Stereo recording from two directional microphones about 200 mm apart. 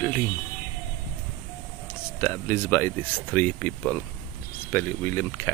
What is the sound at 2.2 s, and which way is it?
Speech, 15° left (ahead or behind).